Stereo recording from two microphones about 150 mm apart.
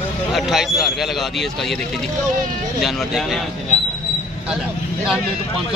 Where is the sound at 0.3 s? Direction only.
Centre (ahead or behind).